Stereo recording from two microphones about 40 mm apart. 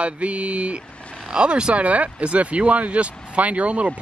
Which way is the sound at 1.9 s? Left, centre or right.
Right.